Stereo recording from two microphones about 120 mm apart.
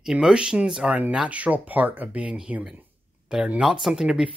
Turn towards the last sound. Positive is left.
turn(degrees=-5)  # may be behind; listen again after turning